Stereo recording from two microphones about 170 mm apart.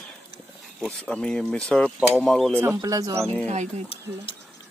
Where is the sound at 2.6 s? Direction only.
20° right (ahead or behind).